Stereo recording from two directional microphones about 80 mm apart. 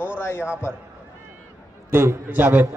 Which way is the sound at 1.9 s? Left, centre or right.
Right.